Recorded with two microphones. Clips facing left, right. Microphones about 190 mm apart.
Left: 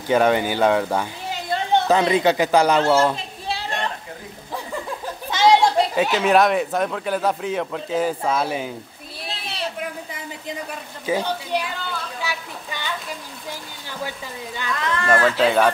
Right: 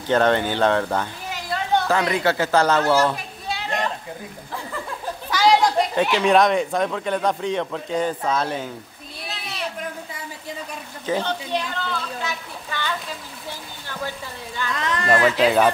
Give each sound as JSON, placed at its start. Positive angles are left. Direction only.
{"t": 0.1, "sound": "speech", "side_deg": 10}
{"t": 1.3, "sound": "a child's voice", "side_deg": 25}
{"t": 2.8, "sound": "children playing", "side_deg": 25}
{"t": 5.3, "sound": "chatter", "side_deg": 25}
{"t": 6.1, "sound": "a man's voice", "side_deg": 5}
{"t": 9.3, "sound": "a sound", "side_deg": 30}
{"t": 11.1, "sound": "speech", "side_deg": 10}
{"t": 12.2, "sound": "a sound", "side_deg": 10}
{"t": 14.8, "sound": "speech", "side_deg": -20}
{"t": 15.4, "sound": "a man's voice", "side_deg": 0}